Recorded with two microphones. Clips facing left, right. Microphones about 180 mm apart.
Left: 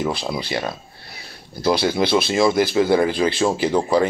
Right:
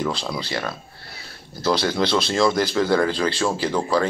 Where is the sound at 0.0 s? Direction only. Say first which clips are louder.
Left 2 dB; 15° left (ahead or behind).